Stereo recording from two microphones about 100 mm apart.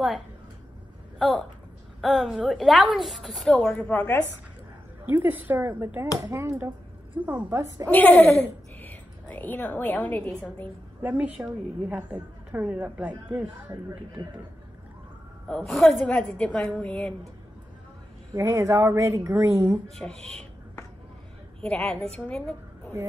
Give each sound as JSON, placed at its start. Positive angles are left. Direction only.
{"t": 2.0, "sound": "a woman's voice", "side_deg": 0}
{"t": 3.7, "sound": "a woman's voice", "side_deg": 15}
{"t": 5.0, "sound": "speech", "side_deg": -20}
{"t": 7.9, "sound": "speech", "side_deg": 15}
{"t": 11.0, "sound": "a woman's voice", "side_deg": -20}
{"t": 15.4, "sound": "a woman's voice", "side_deg": 5}
{"t": 18.3, "sound": "speech", "side_deg": -30}
{"t": 20.0, "sound": "a woman's voice", "side_deg": 10}
{"t": 21.5, "sound": "a woman's voice", "side_deg": 10}